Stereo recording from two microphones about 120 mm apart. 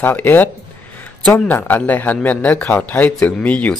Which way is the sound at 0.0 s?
15° left (ahead or behind).